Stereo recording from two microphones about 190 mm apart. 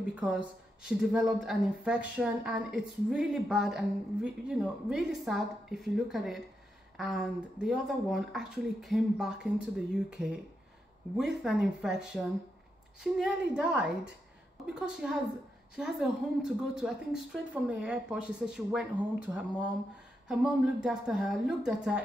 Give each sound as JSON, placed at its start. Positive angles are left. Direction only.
{"t": 0.1, "sound": "a woman's voice", "side_deg": -5}
{"t": 20.2, "sound": "a woman's voice", "side_deg": -5}